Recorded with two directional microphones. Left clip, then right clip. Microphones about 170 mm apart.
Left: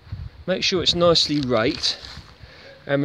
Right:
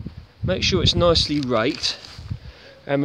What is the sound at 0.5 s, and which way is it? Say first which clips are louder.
Speech: even; centre (ahead or behind).